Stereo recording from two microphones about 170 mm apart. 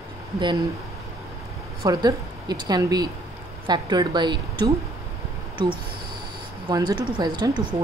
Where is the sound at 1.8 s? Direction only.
25° right (ahead or behind).